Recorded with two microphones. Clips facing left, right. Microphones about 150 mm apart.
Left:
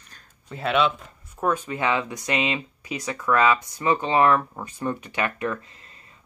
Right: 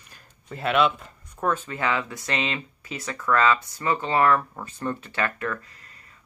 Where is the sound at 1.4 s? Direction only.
15° left (ahead or behind).